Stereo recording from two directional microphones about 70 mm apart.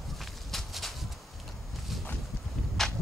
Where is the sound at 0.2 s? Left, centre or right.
Centre.